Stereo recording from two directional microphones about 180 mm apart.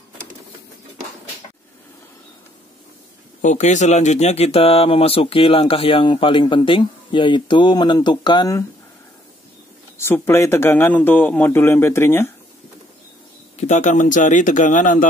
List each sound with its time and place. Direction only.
3.4 s speech: 40° left (ahead or behind); by 8.6 s 20° left (ahead or behind)
9.9 s a man's voice: 10° left (ahead or behind)
13.6 s a man's voice: 40° left (ahead or behind)